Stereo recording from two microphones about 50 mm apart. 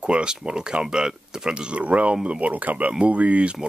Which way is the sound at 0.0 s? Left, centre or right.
Centre.